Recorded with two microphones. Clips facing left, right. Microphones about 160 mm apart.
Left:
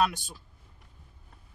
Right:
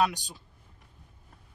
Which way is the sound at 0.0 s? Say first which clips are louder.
Even; 15° right (ahead or behind).